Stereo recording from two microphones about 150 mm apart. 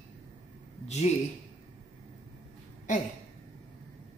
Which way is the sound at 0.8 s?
50° left (ahead or behind).